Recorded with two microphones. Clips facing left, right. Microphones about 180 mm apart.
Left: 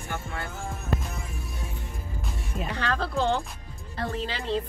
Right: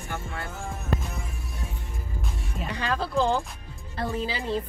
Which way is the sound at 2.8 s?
5° right (ahead or behind).